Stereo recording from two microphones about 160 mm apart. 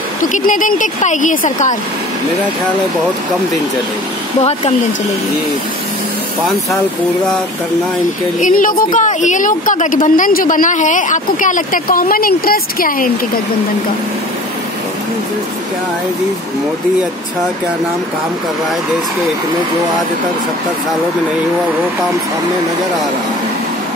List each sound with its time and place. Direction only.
0.2 s speech: 55° left (ahead or behind)
4.4 s speech: 40° left (ahead or behind)
8.4 s a woman's voice: 55° left (ahead or behind)